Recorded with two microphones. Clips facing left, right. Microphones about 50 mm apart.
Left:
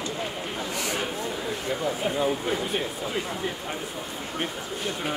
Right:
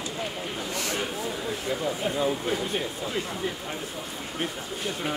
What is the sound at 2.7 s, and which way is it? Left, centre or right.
Speech, centre.